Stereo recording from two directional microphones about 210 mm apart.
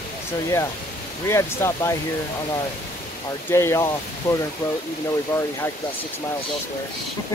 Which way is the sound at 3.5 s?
10° left (ahead or behind).